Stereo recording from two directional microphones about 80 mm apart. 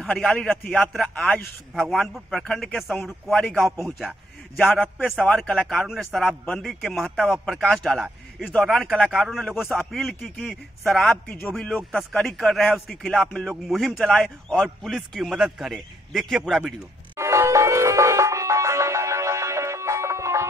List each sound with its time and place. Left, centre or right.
0.2 s a man's voice: centre
11.2 s a man's voice: centre
12.0 s a man's voice: centre
17.2 s music: right